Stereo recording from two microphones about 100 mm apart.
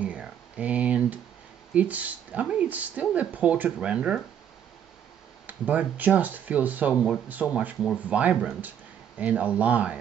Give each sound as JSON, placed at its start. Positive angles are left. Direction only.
{"t": 0.0, "sound": "a sound", "side_deg": -15}
{"t": 1.7, "sound": "speech", "side_deg": -15}
{"t": 5.5, "sound": "speech", "side_deg": -15}